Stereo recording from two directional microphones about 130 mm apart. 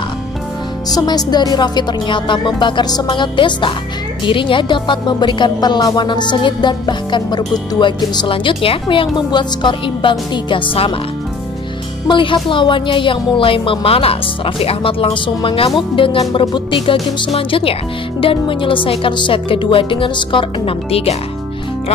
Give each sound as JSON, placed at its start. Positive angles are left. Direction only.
{"t": 0.8, "sound": "speech", "side_deg": 30}
{"t": 12.1, "sound": "speech", "side_deg": 40}